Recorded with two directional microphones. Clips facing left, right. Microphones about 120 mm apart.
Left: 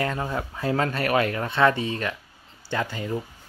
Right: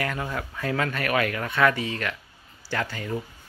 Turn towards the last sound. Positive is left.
turn(degrees=20)  # may be behind; listen again after turning